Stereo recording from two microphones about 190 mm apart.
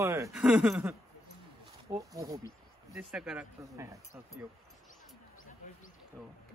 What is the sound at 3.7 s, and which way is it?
Speech, 15° right (ahead or behind).